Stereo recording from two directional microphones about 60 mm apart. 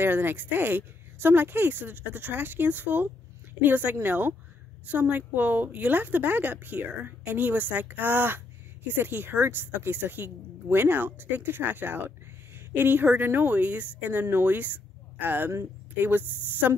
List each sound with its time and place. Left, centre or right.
0.0 s a woman's voice: right